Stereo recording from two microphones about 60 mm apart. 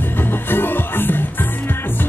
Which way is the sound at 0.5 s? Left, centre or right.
Left.